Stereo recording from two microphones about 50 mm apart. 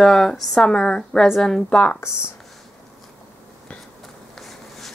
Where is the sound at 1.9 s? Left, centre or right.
Left.